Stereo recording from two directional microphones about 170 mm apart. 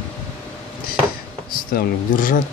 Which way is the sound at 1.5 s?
55° left (ahead or behind).